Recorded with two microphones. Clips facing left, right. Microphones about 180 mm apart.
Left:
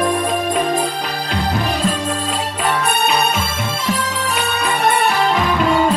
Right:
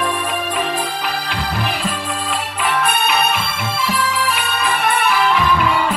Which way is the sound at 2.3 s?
40° left (ahead or behind).